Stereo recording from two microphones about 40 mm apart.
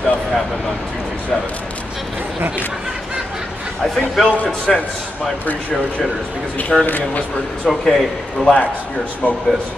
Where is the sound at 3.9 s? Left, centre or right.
Centre.